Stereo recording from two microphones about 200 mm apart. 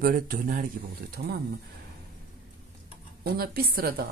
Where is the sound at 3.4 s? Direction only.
50° right (ahead or behind).